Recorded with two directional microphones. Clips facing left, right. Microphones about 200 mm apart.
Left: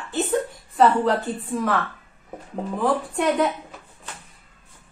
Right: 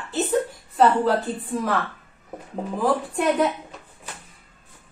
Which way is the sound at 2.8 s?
Centre (ahead or behind).